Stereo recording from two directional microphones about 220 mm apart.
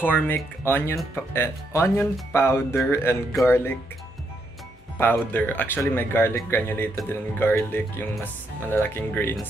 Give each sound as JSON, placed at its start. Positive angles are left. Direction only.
{"t": 0.0, "sound": "speech", "side_deg": 10}
{"t": 4.9, "sound": "speech", "side_deg": 10}